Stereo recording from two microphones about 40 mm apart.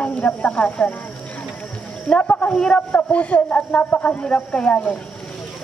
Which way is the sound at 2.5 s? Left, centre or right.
Centre.